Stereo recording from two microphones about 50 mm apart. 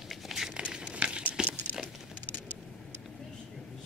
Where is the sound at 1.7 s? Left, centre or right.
Right.